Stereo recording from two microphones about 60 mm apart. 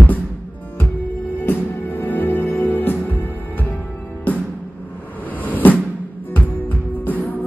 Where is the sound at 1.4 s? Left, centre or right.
Left.